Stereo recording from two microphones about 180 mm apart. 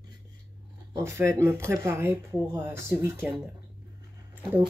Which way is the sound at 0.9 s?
15° right (ahead or behind).